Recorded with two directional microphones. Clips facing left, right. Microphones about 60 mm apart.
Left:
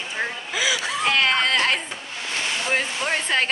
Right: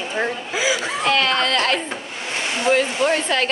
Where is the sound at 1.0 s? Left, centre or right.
Centre.